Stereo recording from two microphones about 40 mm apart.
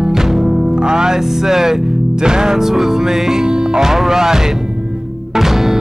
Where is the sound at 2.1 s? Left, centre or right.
Centre.